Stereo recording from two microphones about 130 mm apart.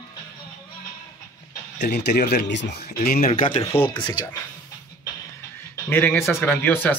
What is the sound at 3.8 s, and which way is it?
Speech, 35° left (ahead or behind).